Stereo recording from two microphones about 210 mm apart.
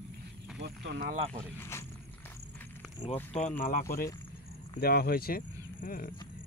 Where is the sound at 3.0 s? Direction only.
15° left (ahead or behind).